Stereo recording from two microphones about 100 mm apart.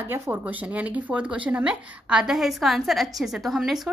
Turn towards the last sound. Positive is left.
turn(degrees=0)  # may be behind; listen again after turning